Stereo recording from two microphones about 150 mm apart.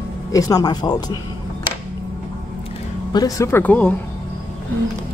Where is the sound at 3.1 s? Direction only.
25° left (ahead or behind).